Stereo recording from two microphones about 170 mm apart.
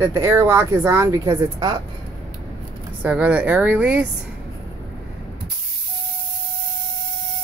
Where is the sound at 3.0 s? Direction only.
10° right (ahead or behind).